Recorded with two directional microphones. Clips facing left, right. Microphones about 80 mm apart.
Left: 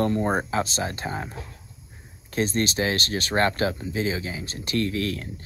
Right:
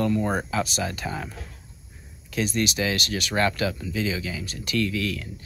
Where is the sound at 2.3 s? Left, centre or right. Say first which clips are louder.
Left 1 dB; left.